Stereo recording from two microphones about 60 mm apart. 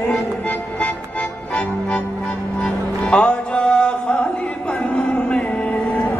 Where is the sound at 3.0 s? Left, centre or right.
Centre.